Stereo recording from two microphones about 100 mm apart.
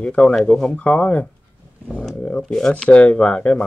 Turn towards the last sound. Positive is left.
turn(degrees=10)  # may be behind; listen again after turning